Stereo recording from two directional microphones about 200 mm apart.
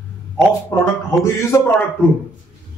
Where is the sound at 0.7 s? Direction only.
15° left (ahead or behind).